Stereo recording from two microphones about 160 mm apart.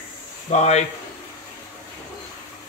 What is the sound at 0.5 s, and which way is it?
Speech, 45° left (ahead or behind).